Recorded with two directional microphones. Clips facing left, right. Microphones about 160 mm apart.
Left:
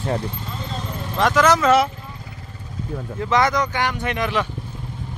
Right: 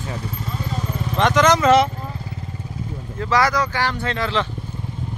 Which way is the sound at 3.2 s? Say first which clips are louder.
Even; 20° left (ahead or behind).